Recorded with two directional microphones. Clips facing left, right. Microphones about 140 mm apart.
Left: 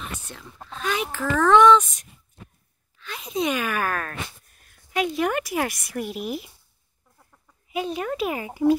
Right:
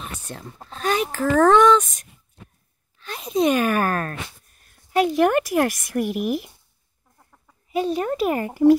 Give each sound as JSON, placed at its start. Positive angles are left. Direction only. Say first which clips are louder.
{"t": 0.3, "sound": "speech", "louder": "right 3 dB", "side_deg": -40}
{"t": 7.7, "sound": "speech", "louder": "right 5 dB", "side_deg": -40}